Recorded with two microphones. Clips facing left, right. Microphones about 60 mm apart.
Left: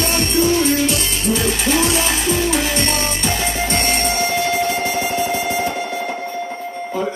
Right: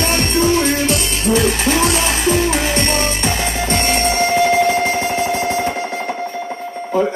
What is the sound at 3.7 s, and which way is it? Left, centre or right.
Music, right.